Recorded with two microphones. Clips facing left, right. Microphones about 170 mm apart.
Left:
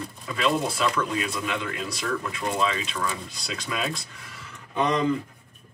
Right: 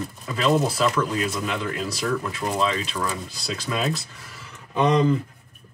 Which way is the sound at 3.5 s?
35° right (ahead or behind).